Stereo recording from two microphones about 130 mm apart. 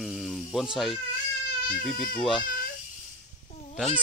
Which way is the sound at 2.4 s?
90° left.